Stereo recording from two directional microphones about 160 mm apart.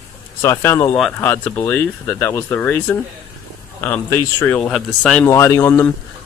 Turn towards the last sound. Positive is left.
turn(degrees=10)  # may be behind; listen again after turning